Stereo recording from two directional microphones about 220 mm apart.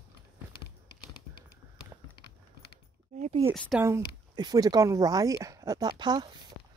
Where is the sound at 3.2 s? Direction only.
30° right (ahead or behind).